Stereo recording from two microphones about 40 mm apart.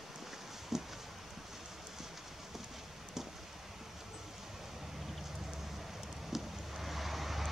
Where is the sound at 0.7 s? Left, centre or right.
Centre.